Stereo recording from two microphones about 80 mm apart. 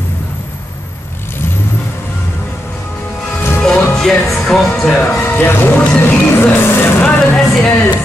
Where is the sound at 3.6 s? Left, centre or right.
Centre.